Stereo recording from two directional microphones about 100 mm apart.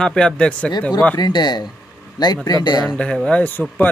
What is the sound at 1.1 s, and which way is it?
Speech, 45° left (ahead or behind).